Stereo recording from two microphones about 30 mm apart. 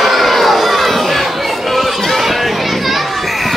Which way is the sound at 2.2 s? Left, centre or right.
Centre.